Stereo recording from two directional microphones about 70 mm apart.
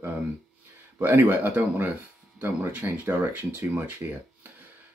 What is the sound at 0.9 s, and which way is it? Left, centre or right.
Speech, right.